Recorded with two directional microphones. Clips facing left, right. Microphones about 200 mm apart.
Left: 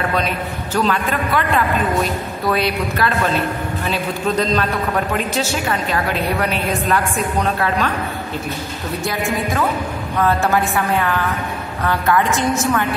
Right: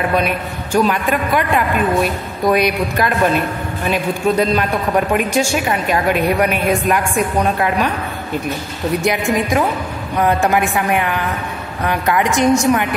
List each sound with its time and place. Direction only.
0.7 s a woman's voice: 15° right (ahead or behind)
9.0 s a woman's voice: 15° right (ahead or behind)